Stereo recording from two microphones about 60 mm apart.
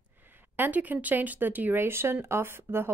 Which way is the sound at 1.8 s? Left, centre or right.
Right.